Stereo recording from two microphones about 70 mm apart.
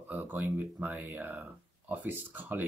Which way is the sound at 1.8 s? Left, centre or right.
Right.